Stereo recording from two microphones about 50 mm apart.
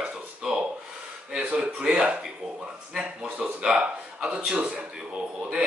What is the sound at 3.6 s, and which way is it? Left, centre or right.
Speech, centre.